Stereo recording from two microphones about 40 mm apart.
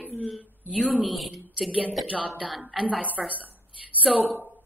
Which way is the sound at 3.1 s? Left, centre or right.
Right.